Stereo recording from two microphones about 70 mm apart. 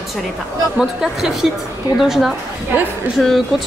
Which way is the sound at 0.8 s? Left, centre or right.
Centre.